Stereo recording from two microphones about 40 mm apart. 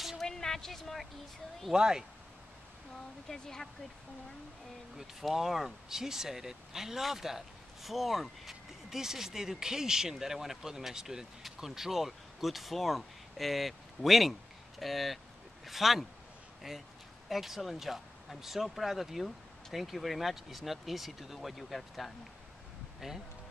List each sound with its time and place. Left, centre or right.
0.2 s a sound: centre
1.7 s speech: centre
3.3 s speech: centre
4.9 s speech: centre